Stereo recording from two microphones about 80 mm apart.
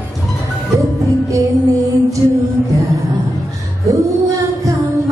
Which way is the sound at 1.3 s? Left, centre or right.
Right.